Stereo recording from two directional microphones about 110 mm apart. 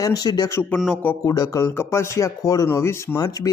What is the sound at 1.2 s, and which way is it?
A man's voice, 30° left (ahead or behind).